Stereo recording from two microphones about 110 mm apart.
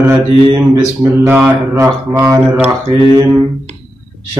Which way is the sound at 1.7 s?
25° right (ahead or behind).